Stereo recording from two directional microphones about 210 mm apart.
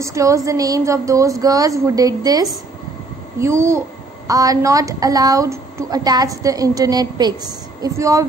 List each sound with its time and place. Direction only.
0.0 s a woman's voice: 15° right (ahead or behind)